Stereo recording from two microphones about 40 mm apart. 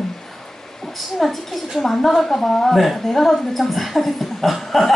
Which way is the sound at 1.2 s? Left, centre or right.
Centre.